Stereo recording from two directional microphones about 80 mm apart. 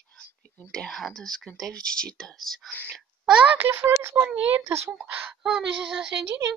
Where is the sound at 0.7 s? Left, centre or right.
Centre.